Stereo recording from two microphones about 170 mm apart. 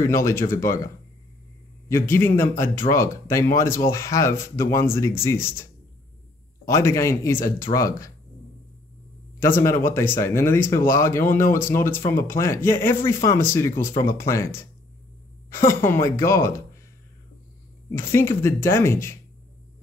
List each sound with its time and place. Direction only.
0.0 s speech: 15° left (ahead or behind)
1.9 s speech: 15° left (ahead or behind)
9.4 s speech: 15° left (ahead or behind)
15.7 s speech: 15° left (ahead or behind)
17.9 s speech: 15° left (ahead or behind)